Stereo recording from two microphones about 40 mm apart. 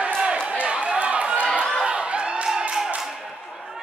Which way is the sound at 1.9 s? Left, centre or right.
Right.